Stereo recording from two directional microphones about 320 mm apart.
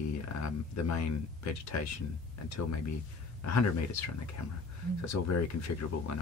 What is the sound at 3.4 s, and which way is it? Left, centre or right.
Speech, left.